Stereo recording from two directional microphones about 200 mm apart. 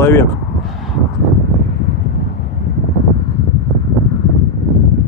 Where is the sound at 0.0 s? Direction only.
10° left (ahead or behind).